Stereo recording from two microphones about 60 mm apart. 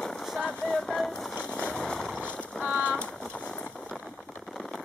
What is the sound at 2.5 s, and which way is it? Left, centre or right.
Boat, centre.